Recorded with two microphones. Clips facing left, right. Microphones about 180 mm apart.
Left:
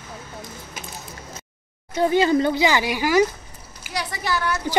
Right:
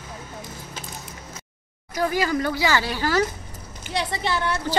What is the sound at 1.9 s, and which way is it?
Speech, 25° left (ahead or behind).